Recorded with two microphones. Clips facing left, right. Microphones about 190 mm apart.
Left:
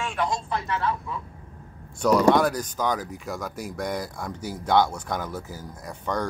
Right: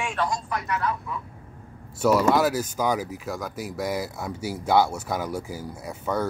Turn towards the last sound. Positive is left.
turn(degrees=-5)  # may be behind; listen again after turning